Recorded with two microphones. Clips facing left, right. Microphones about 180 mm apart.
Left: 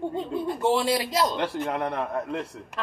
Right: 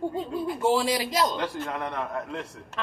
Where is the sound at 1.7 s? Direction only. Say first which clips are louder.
Left 3 dB; 30° left (ahead or behind).